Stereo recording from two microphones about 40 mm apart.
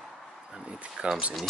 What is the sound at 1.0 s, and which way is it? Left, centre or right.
Speech, right.